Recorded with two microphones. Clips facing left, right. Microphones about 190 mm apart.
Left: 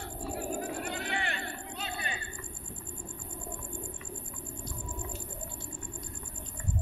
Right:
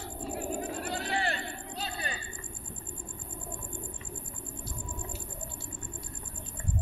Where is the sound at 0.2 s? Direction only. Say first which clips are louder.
Even; 20° right (ahead or behind).